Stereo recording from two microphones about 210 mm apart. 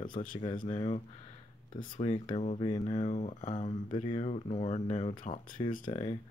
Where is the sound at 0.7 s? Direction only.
25° left (ahead or behind).